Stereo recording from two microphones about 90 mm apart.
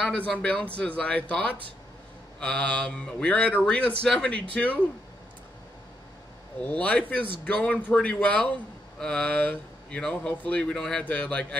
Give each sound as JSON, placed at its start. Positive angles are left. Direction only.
{"t": 0.0, "sound": "speech", "side_deg": 15}
{"t": 6.8, "sound": "speech", "side_deg": 15}